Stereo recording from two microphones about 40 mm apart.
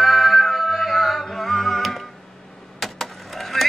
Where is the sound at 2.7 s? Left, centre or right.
Centre.